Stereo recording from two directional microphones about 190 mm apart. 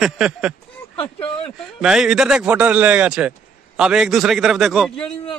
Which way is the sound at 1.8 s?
5° right (ahead or behind).